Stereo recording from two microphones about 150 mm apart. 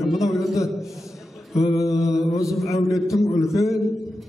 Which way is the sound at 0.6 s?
20° left (ahead or behind).